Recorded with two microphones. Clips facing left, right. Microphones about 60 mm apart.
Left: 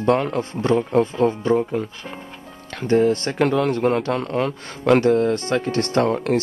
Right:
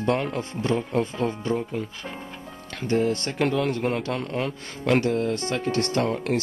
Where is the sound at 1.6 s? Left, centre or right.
Left.